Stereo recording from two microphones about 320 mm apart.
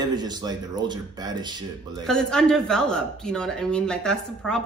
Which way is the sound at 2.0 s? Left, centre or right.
Centre.